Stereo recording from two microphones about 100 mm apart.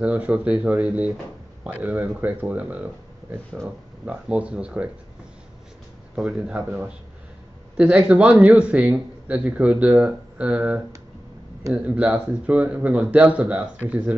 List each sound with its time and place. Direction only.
0.0 s speech: 10° right (ahead or behind)
6.1 s speech: 5° right (ahead or behind)